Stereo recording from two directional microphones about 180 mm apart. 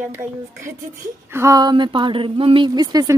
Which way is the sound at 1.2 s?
15° right (ahead or behind).